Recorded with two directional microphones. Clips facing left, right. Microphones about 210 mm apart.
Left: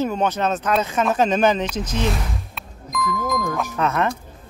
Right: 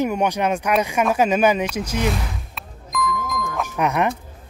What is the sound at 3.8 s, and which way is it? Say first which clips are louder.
Speech: right 2 dB; 15° right (ahead or behind).